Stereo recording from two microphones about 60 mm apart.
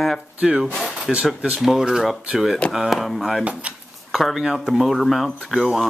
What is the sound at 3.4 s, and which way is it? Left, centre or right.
Speech, right.